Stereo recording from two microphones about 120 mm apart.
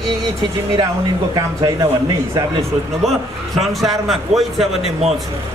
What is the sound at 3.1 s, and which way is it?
Speech, centre (ahead or behind).